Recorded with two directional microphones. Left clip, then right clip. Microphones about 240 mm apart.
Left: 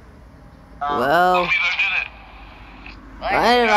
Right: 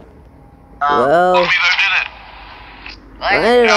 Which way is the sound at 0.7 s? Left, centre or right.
Right.